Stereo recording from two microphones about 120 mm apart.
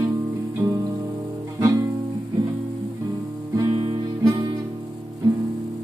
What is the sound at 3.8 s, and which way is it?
Music, 35° right (ahead or behind).